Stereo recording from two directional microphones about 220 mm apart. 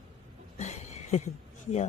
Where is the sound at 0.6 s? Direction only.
30° left (ahead or behind).